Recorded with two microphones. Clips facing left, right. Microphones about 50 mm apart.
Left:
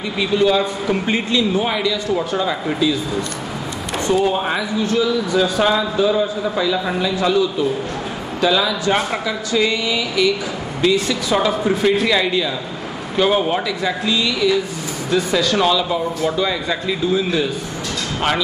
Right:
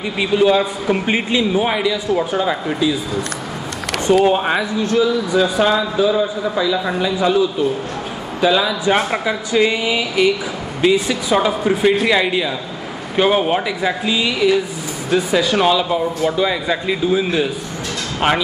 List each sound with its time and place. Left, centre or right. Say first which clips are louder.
0.2 s a man's voice: right 2 dB; centre
4.4 s a man's voice: right 2 dB; centre
5.6 s a man's voice: right 1 dB; centre
7.0 s a man's voice: right 2 dB; centre